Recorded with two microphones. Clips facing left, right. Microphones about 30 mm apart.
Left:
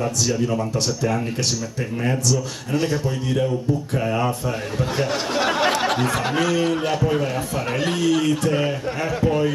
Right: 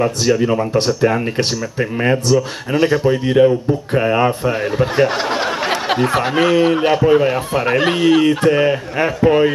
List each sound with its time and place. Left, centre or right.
0.2 s speech: right
2.2 s speech: right
4.0 s speech: right
4.7 s speech: right
9.2 s speech: right